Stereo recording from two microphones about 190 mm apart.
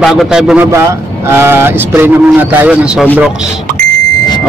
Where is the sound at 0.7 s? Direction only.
15° right (ahead or behind).